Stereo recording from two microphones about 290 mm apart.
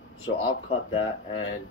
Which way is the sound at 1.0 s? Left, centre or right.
Left.